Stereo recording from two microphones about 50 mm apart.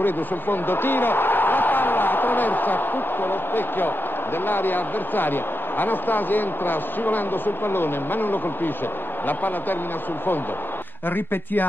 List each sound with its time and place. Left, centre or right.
0.0 s a man's voice: left
11.1 s a man's voice: left